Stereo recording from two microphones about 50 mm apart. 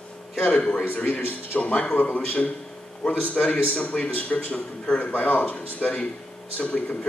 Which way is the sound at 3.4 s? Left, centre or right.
Centre.